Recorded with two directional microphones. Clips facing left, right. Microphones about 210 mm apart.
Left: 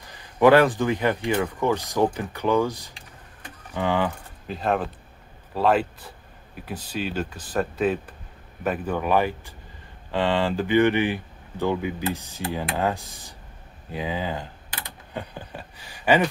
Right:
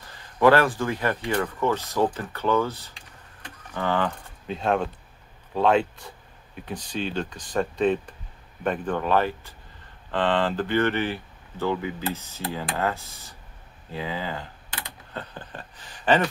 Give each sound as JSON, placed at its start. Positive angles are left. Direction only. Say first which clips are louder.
{"t": 0.1, "sound": "speech", "louder": "left 2 dB", "side_deg": 15}
{"t": 4.5, "sound": "speech", "louder": "even", "side_deg": 0}